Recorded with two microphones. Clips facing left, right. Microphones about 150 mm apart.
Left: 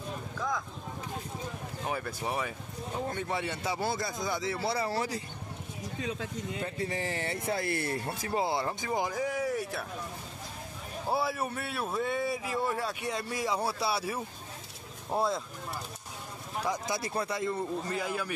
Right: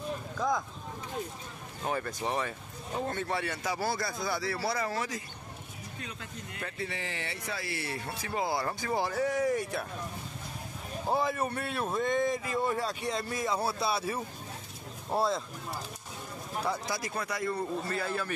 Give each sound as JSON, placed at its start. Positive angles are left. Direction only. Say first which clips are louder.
{"t": 0.4, "sound": "a sound", "louder": "right 4 dB", "side_deg": -15}
{"t": 1.9, "sound": "speech", "louder": "right 2 dB", "side_deg": 5}
{"t": 6.8, "sound": "speech", "louder": "left 3 dB", "side_deg": 40}
{"t": 8.4, "sound": "speech", "louder": "even", "side_deg": 25}
{"t": 11.1, "sound": "speech", "louder": "right 1 dB", "side_deg": 10}
{"t": 15.1, "sound": "speech", "louder": "right 1 dB", "side_deg": 0}
{"t": 16.6, "sound": "speech", "louder": "left 2 dB", "side_deg": 20}